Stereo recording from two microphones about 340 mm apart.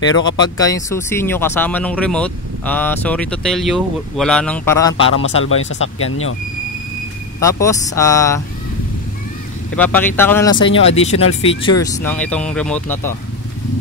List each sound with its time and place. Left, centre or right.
0.1 s speech: centre
5.2 s speech: left
7.3 s speech: centre
9.8 s speech: centre
11.8 s speech: centre